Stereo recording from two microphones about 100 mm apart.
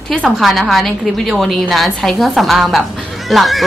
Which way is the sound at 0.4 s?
Centre (ahead or behind).